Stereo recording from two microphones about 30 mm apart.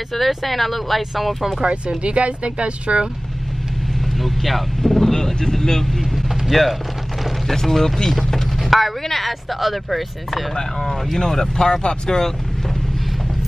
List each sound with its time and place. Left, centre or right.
0.3 s speech: centre
2.0 s speech: right
4.2 s speech: centre
5.1 s speech: centre
6.5 s speech: centre
8.0 s vehicle: centre
8.6 s a sound: centre
9.0 s speech: centre
10.8 s speech: centre; by 12.2 s left